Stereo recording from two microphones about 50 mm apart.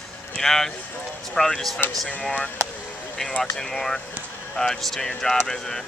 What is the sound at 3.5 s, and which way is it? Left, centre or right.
Speech, centre.